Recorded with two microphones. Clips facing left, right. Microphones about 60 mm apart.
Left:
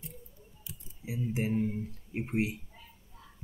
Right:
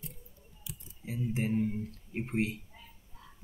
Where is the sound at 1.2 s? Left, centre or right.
Centre.